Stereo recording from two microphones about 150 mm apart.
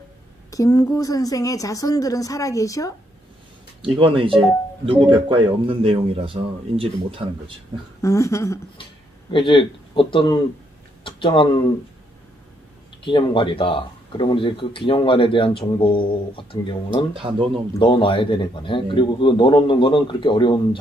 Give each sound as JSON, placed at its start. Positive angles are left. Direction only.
{"t": 0.5, "sound": "a woman's voice", "side_deg": 20}
{"t": 3.8, "sound": "speech", "side_deg": -35}
{"t": 8.0, "sound": "speech", "side_deg": 20}
{"t": 9.3, "sound": "speech", "side_deg": 35}
{"t": 13.0, "sound": "speech", "side_deg": 35}
{"t": 17.1, "sound": "speech", "side_deg": -35}
{"t": 17.7, "sound": "speech", "side_deg": 35}